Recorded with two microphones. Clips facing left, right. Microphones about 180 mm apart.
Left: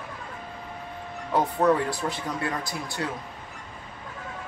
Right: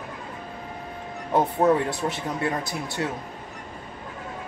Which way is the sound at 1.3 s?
20° right (ahead or behind).